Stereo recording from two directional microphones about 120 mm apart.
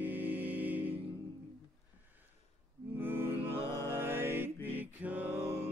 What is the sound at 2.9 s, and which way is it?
Music, 15° right (ahead or behind).